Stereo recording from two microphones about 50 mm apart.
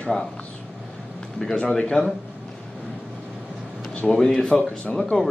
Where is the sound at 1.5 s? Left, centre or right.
Centre.